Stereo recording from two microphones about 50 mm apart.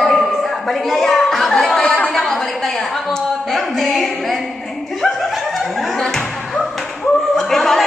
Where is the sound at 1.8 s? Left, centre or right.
Left.